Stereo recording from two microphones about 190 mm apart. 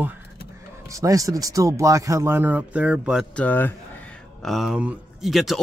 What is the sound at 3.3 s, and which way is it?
Speech, 10° left (ahead or behind).